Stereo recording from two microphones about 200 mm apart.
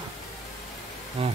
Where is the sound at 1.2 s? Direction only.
30° right (ahead or behind).